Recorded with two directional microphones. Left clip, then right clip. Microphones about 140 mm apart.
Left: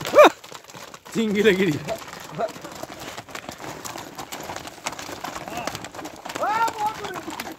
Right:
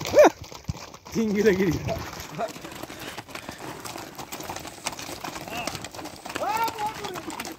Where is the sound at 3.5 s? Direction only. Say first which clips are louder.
Left 2 dB; 55° left (ahead or behind).